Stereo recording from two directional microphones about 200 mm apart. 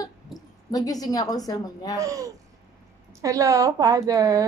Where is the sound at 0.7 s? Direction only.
20° left (ahead or behind).